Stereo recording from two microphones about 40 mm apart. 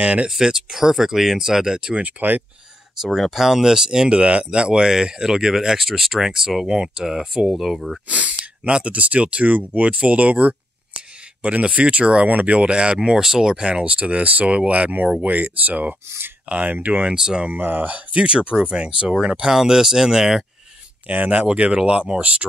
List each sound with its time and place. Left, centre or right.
0.0 s speech: right
0.3 s speech: centre
2.0 s speech: right
3.2 s speech: centre
4.2 s speech: right; by 8.0 s centre
8.1 s speech: right; by 13.6 s centre
13.6 s speech: right
17.1 s speech: centre
17.5 s speech: right
19.5 s speech: centre
21.1 s speech: right
21.4 s speech: right